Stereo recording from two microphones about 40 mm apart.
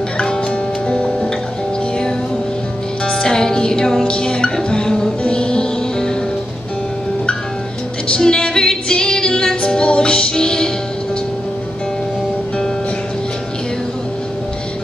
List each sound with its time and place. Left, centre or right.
0.2 s music: left
3.1 s music: centre
8.1 s music: left